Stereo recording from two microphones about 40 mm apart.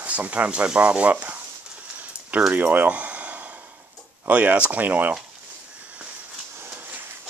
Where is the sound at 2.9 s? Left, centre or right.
Right.